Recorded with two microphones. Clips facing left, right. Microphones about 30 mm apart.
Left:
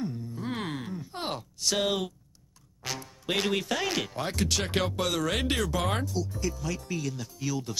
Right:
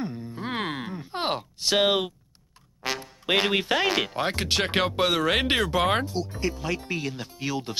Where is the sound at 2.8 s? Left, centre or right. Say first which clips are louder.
Right 6 dB; right.